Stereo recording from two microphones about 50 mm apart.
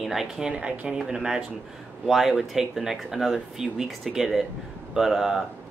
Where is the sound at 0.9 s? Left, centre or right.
Centre.